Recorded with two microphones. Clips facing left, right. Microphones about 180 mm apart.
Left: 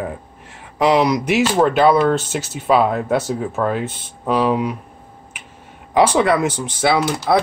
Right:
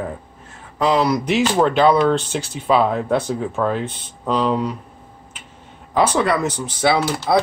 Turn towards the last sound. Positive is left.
turn(degrees=0)  # may be behind; listen again after turning